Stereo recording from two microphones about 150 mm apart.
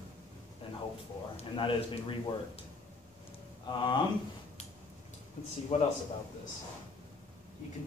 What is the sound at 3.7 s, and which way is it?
Speech, 30° left (ahead or behind).